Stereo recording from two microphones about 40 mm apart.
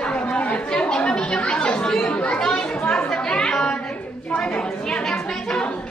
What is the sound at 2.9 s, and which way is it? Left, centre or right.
Chatter, left.